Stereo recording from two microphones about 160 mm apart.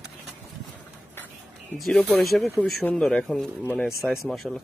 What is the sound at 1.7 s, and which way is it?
Speech, centre (ahead or behind).